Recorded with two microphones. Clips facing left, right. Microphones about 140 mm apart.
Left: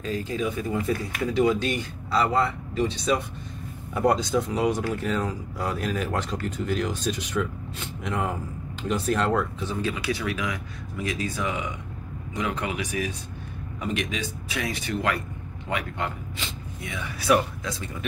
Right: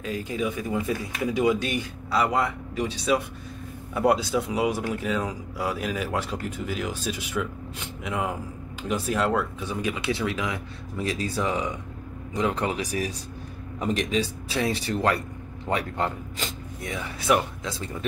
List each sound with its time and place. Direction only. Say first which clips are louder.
0.0 s a man's voice: left 1 dB; 10° right (ahead or behind); by 17.0 s 40° right (ahead or behind)
17.2 s speech: left 1 dB; 25° right (ahead or behind)